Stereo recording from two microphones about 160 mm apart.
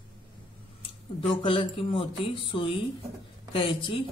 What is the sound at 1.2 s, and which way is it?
Speech, 30° left (ahead or behind).